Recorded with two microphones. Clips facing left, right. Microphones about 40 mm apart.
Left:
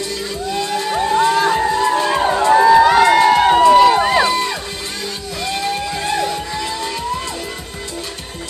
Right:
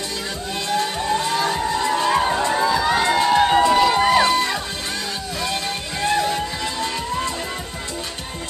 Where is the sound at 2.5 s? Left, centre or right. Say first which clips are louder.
Left 14 dB; left.